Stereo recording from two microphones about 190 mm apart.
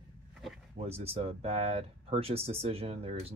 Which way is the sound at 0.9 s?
35° right (ahead or behind).